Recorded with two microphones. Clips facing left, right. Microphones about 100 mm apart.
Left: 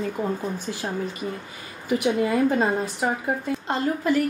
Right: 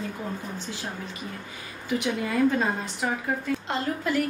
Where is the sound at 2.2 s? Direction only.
30° left (ahead or behind).